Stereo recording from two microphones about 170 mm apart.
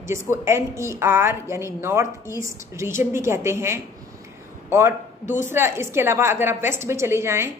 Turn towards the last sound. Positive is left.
turn(degrees=-15)  # may be behind; listen again after turning